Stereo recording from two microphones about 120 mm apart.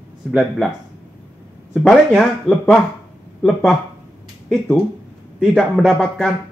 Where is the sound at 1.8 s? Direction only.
Centre (ahead or behind).